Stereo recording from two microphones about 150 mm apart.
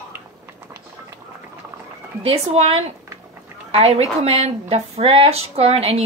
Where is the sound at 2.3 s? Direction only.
40° right (ahead or behind).